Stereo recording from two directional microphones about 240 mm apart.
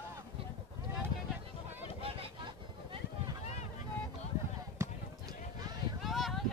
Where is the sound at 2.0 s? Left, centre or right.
Right.